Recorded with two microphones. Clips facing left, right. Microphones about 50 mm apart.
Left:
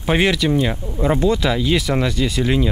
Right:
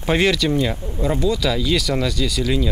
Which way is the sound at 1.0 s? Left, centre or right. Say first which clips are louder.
Left 3 dB; left.